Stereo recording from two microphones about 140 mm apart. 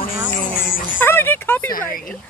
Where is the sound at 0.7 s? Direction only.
85° left.